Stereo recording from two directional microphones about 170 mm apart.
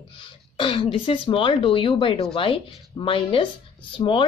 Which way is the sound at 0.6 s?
30° left (ahead or behind).